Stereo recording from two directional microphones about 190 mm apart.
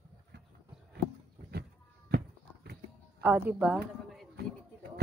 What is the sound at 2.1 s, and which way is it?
Walk, 55° right (ahead or behind).